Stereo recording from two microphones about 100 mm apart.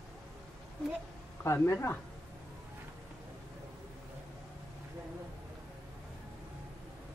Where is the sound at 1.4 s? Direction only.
25° left (ahead or behind).